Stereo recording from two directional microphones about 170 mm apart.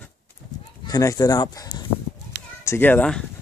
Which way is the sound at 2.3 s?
10° left (ahead or behind).